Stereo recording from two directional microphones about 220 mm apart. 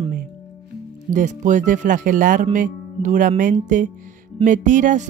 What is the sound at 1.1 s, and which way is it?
Speech, 35° right (ahead or behind).